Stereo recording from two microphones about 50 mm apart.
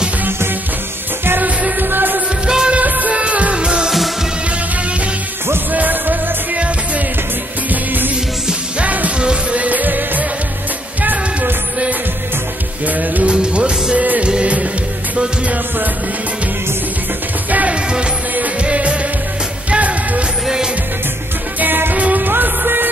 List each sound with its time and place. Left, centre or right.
1.2 s music: right
2.4 s music of bollywood: centre
2.7 s music: right
5.7 s music: right
7.7 s music: right
12.8 s music: right
13.3 s music: right
17.5 s music: right
20.4 s music: centre
21.5 s music: right